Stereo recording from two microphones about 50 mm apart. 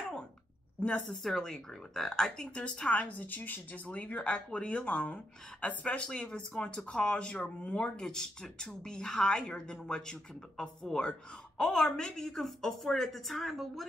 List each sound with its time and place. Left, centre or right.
1.0 s speech: centre; by 6.0 s left
6.0 s a woman's voice: centre